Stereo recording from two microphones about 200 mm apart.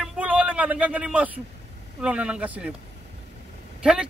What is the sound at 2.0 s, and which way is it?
Speech, 5° right (ahead or behind).